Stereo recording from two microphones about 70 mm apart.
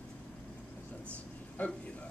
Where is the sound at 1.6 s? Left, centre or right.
Left.